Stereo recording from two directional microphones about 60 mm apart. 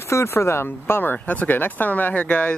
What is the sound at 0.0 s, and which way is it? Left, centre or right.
Speech, left.